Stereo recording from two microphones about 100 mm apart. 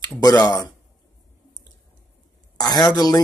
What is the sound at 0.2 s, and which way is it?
Speech, 40° left (ahead or behind).